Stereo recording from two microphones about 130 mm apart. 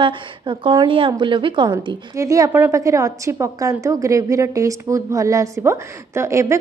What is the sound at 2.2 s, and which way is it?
A woman's voice, 25° right (ahead or behind).